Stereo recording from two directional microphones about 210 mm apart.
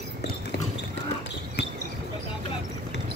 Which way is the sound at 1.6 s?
55° left (ahead or behind).